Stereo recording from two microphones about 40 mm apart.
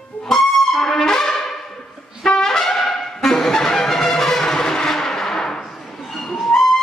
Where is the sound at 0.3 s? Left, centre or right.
Centre.